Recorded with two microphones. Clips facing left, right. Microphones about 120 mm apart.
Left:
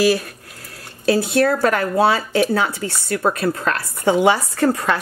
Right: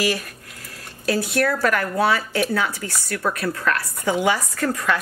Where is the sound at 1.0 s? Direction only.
25° left (ahead or behind).